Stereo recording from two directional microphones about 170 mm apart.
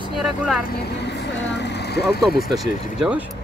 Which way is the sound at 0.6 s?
75° left (ahead or behind).